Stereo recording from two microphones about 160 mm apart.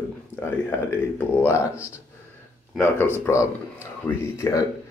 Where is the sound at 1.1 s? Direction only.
15° left (ahead or behind).